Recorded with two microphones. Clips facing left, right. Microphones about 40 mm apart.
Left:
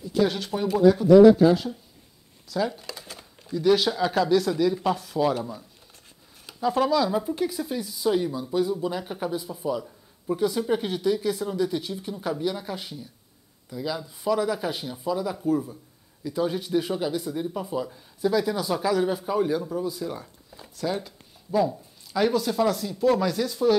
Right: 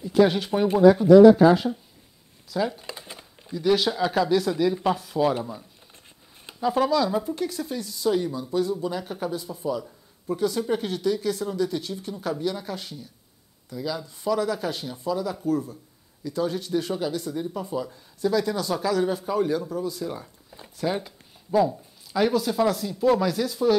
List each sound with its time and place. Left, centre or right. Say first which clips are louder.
0.3 s speech: right 4 dB; centre
0.7 s speech: right 2 dB; right
2.5 s speech: even; centre
2.9 s a sound: right 1 dB; centre
3.5 s speech: left 1 dB; centre